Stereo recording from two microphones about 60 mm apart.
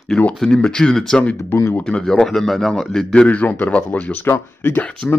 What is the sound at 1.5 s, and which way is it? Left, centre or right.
Speech, left.